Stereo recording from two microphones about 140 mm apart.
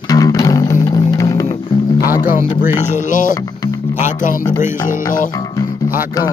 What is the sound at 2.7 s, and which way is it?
Speech, 65° left (ahead or behind).